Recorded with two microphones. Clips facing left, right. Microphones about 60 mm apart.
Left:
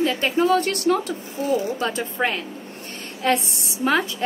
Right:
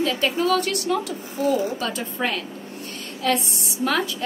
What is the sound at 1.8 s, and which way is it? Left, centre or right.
A woman's voice, left.